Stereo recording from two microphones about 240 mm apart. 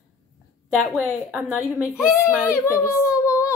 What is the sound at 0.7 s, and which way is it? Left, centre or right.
A woman's voice, centre.